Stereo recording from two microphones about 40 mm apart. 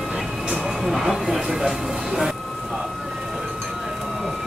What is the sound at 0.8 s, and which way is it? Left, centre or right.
Speech, centre.